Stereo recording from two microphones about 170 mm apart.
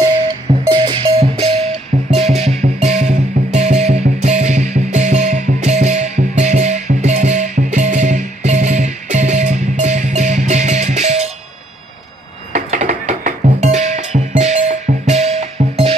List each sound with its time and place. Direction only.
0.0 s music: 25° right (ahead or behind)
12.5 s music: 50° right (ahead or behind)